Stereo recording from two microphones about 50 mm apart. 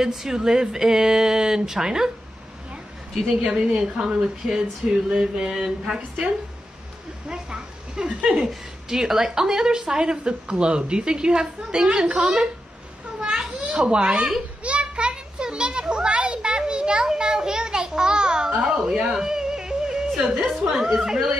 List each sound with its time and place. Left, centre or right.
0.0 s a woman's voice: centre
3.4 s a woman's voice: centre
7.2 s a sound: centre
8.2 s a woman's voice: centre
13.6 s a child's voice: centre
14.6 s children playing: right
18.6 s a woman's voice: centre
19.1 s music: centre
20.4 s speech: centre